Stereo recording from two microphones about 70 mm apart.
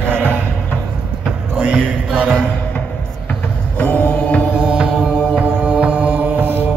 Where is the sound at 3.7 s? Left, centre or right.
Left.